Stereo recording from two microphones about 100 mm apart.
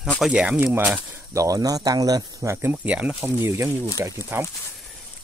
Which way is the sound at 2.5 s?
20° right (ahead or behind).